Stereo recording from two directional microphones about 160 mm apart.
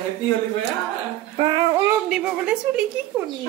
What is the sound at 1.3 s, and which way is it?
Dog, 30° right (ahead or behind).